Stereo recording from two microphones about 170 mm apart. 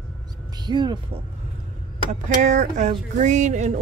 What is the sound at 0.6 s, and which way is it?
Speech, 25° right (ahead or behind).